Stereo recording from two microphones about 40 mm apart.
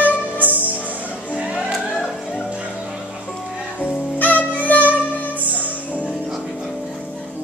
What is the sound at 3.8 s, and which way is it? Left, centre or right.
Music, left.